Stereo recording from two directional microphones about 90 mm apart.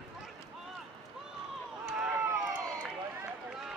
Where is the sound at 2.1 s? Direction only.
30° right (ahead or behind).